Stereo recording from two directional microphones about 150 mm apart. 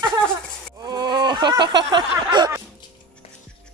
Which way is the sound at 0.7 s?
25° right (ahead or behind).